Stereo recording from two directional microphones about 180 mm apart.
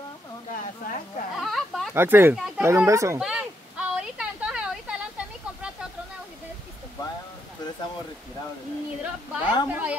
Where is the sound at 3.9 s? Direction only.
5° right (ahead or behind).